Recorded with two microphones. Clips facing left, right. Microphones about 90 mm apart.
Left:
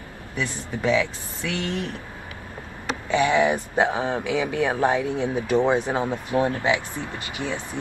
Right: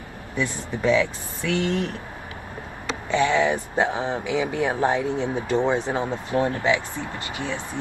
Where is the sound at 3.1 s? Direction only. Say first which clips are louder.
Left 1 dB; 15° left (ahead or behind).